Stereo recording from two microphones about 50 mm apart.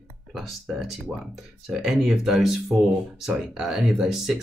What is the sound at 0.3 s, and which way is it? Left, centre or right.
Speech, centre.